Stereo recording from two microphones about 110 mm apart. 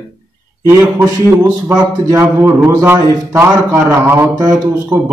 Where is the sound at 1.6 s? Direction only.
30° right (ahead or behind).